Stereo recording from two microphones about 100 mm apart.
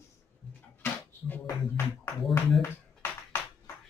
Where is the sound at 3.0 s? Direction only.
30° left (ahead or behind).